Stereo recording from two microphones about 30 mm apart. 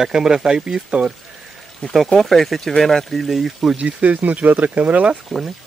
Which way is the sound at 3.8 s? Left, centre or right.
Right.